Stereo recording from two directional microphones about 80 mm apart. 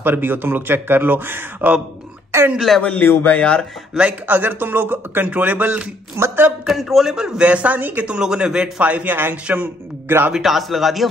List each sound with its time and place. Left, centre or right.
0.0 s a man's voice: right
2.5 s speech: centre
2.8 s speech: centre
4.3 s a man's voice: right
6.1 s speech: right
6.6 s a man's voice: centre; by 10.3 s right
10.3 s speech: centre